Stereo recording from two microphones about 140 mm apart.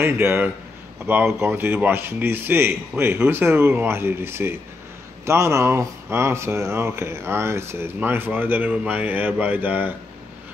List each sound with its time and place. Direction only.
0.0 s speech: 15° right (ahead or behind)